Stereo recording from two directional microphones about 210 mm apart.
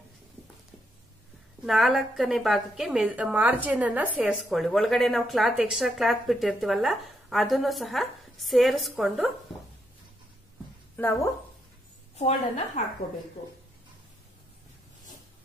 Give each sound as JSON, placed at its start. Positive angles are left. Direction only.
{"t": 1.7, "sound": "a woman's voice", "side_deg": 0}
{"t": 12.2, "sound": "a woman's voice", "side_deg": 35}